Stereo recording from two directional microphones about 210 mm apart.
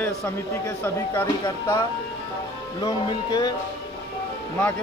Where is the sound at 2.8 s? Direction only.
20° left (ahead or behind).